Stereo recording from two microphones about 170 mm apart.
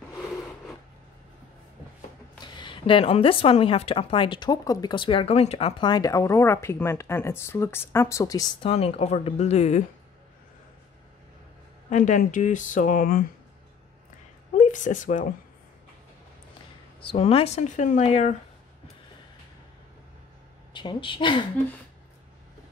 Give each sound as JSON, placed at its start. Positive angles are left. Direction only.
{"t": 2.4, "sound": "a woman's voice", "side_deg": 30}
{"t": 8.6, "sound": "speech", "side_deg": 35}
{"t": 11.9, "sound": "speech", "side_deg": 50}
{"t": 14.6, "sound": "speech", "side_deg": 50}
{"t": 17.0, "sound": "speech", "side_deg": 35}
{"t": 20.7, "sound": "a woman's voice", "side_deg": 30}